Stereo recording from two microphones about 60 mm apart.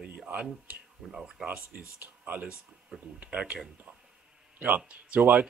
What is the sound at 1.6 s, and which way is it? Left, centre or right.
Speech, right.